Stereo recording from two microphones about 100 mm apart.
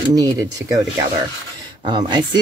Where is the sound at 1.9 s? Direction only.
50° right (ahead or behind).